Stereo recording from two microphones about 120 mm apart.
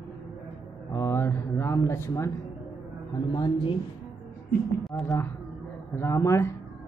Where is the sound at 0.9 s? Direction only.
20° left (ahead or behind).